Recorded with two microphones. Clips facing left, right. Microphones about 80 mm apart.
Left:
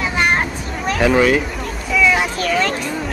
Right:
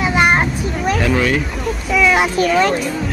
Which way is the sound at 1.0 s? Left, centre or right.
Centre.